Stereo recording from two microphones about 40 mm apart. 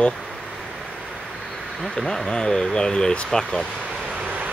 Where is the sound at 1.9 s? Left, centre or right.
Centre.